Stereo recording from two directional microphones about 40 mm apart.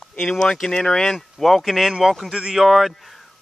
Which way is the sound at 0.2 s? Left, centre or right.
Centre.